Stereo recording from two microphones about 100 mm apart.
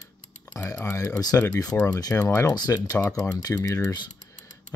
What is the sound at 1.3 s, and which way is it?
Speech, 25° left (ahead or behind).